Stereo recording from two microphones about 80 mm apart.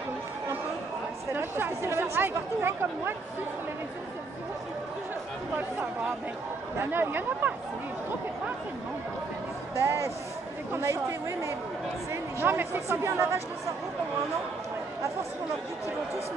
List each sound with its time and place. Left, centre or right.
1.3 s speech: right
6.8 s speech: right
9.8 s speech: right
12.1 s speech: right